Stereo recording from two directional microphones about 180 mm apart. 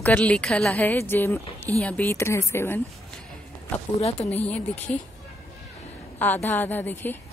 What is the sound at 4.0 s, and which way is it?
Speech, 35° left (ahead or behind).